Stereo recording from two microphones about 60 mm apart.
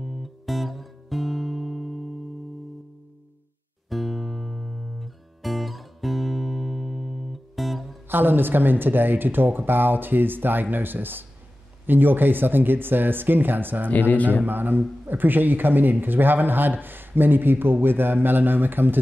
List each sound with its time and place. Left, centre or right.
0.0 s music: centre
3.9 s guitar: centre
8.1 s speech: right
13.8 s speech: left
14.4 s speech: right